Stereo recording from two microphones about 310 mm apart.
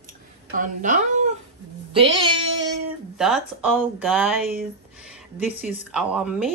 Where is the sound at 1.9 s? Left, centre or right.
Centre.